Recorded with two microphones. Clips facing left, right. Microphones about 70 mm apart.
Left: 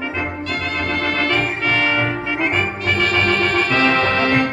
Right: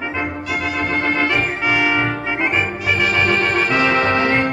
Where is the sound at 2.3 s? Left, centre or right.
Centre.